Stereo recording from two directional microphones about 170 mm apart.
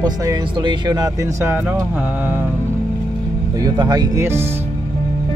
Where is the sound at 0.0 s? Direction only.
20° right (ahead or behind).